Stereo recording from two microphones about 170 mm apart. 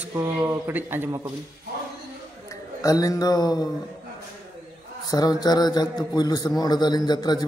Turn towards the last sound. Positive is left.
turn(degrees=25)  # may be behind; listen again after turning